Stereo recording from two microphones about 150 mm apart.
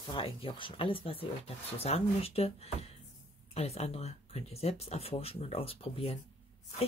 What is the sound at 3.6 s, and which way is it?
Speech, 45° left (ahead or behind).